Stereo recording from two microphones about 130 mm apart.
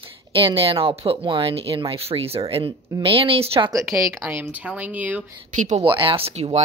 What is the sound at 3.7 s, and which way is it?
A woman's voice, 25° right (ahead or behind).